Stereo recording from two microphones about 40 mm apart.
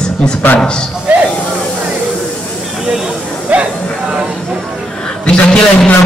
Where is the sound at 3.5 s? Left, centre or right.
Right.